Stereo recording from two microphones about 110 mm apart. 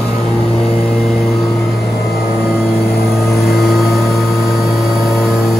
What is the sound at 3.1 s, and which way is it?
Vehicle, centre (ahead or behind).